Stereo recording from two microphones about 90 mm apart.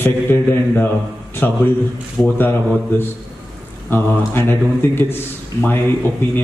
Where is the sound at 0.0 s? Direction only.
20° left (ahead or behind).